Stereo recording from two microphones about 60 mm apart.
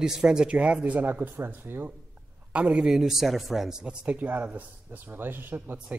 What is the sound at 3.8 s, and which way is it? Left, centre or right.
Speech, centre.